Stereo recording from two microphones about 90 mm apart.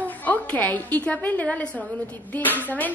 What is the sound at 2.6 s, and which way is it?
Music, 20° left (ahead or behind).